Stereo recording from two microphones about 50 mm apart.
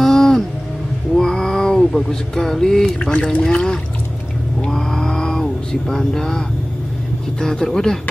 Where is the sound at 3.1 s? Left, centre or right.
Left.